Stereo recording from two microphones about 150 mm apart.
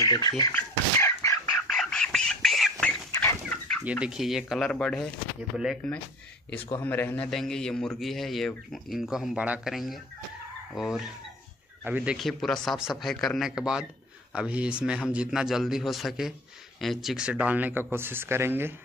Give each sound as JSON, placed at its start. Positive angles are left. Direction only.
{"t": 0.0, "sound": "speech", "side_deg": 25}
{"t": 0.5, "sound": "a sound", "side_deg": 15}
{"t": 1.7, "sound": "bird", "side_deg": 5}
{"t": 3.1, "sound": "chicken", "side_deg": 15}
{"t": 3.8, "sound": "a man's voice", "side_deg": -5}
{"t": 6.8, "sound": "a man's voice", "side_deg": 15}
{"t": 7.2, "sound": "a man's voice", "side_deg": 5}